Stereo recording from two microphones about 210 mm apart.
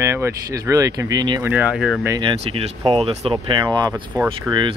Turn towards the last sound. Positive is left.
turn(degrees=-20)  # may be behind; listen again after turning